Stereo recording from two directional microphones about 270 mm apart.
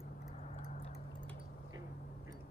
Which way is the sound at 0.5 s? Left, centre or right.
Left.